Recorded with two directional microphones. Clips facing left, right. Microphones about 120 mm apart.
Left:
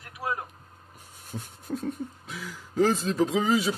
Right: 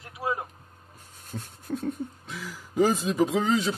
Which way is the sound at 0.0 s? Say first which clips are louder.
Right 2 dB; 25° right (ahead or behind).